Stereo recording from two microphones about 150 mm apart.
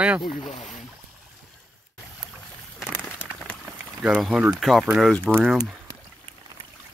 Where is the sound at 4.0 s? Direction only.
5° right (ahead or behind).